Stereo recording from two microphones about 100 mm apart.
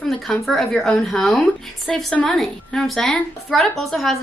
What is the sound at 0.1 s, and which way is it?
A woman's voice, centre (ahead or behind).